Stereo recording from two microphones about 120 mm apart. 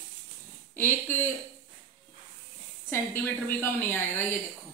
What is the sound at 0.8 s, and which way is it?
Speech, 15° left (ahead or behind).